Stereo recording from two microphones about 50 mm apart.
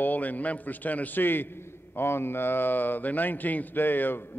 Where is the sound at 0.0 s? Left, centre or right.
Left.